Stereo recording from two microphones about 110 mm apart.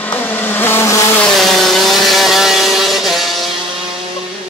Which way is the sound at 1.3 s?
Centre (ahead or behind).